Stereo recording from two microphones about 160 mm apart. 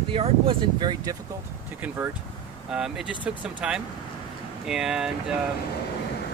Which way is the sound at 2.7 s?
5° right (ahead or behind).